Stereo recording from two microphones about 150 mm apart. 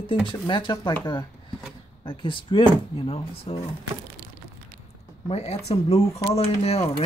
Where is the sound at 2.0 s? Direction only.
35° left (ahead or behind).